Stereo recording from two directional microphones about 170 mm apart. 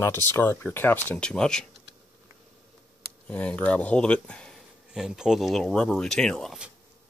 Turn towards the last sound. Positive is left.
turn(degrees=-5)  # may be behind; listen again after turning